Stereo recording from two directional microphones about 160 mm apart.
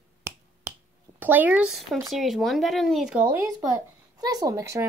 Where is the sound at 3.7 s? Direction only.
20° right (ahead or behind).